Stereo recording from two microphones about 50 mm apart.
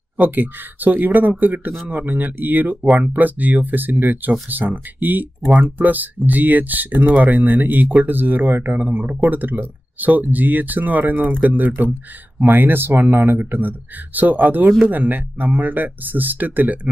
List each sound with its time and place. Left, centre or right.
0.3 s speech: right
8.7 s speech: right